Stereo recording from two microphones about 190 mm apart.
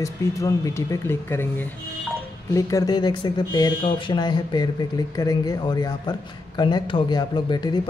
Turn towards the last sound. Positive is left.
turn(degrees=25)  # may be behind; listen again after turning